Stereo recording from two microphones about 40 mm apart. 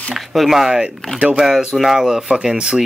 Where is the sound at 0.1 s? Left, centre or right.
Centre.